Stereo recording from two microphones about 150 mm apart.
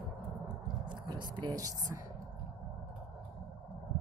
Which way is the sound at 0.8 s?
30° right (ahead or behind).